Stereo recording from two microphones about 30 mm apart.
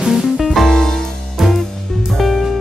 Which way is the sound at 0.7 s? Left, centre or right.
Centre.